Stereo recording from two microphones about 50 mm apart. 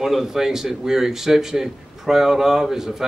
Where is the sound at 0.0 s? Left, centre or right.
Centre.